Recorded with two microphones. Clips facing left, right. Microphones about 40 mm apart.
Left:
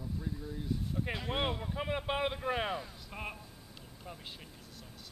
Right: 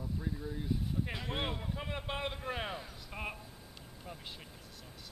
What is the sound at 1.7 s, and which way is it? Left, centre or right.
A man's voice, centre.